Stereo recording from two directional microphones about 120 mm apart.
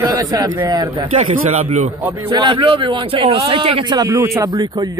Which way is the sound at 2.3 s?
40° right (ahead or behind).